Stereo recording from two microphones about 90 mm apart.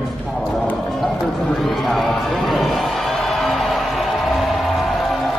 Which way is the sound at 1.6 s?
Centre (ahead or behind).